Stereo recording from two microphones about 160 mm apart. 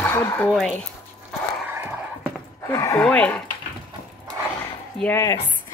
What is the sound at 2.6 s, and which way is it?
Speech, 15° left (ahead or behind).